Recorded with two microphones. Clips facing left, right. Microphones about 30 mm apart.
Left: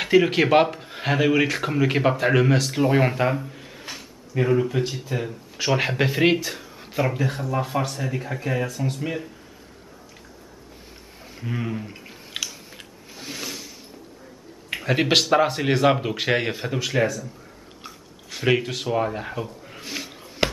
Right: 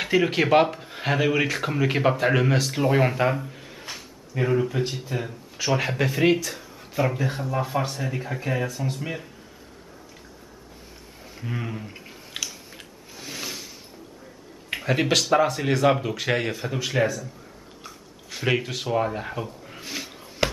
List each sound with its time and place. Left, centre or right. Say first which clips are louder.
0.0 s speech: left 3 dB; centre
4.0 s a sound: left 3 dB; centre
4.8 s speech: left 2 dB; centre
5.8 s speech: left 3 dB; left
6.4 s a sound: left 2 dB; centre
7.0 s speech: left 1 dB; centre
11.3 s a sound: left 3 dB; centre
14.7 s a sound: left 1 dB; centre
15.0 s speech: left 2 dB; centre
15.9 s speech: left 2 dB; centre
16.7 s speech: left 1 dB; centre
18.3 s speech: left 3 dB; centre